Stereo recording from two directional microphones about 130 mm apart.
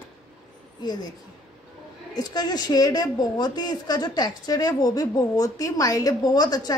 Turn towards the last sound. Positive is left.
turn(degrees=30)  # may be behind; listen again after turning